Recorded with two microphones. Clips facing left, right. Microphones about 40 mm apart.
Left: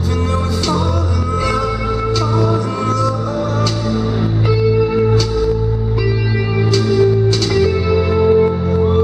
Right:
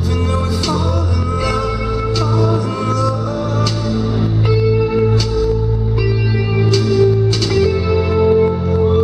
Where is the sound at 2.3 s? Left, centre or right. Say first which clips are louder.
Even; centre.